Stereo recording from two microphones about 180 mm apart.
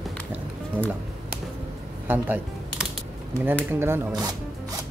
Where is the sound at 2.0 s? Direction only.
10° right (ahead or behind).